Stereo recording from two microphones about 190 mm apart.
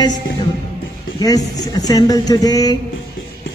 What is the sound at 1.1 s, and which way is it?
Speech, 20° left (ahead or behind).